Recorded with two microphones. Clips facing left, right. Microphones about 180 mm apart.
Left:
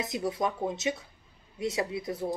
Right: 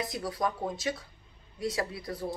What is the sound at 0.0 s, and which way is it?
Speech, 20° left (ahead or behind).